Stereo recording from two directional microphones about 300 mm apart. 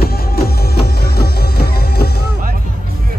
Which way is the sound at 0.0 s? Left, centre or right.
Left.